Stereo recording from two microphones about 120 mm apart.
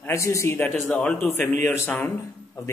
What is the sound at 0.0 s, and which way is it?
Speech, 25° left (ahead or behind).